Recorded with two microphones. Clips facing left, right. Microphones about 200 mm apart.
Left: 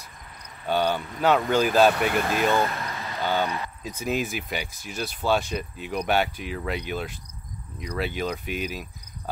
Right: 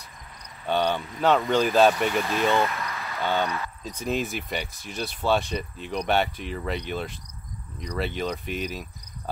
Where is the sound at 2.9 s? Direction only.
15° left (ahead or behind).